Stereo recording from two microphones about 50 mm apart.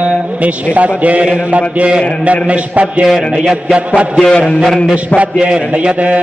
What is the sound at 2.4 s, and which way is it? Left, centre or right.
Mantra, right.